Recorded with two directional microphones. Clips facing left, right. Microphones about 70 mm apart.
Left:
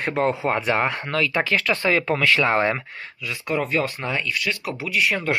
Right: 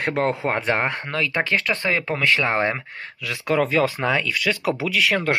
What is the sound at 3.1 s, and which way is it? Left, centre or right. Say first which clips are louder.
Speech: right 4 dB; right.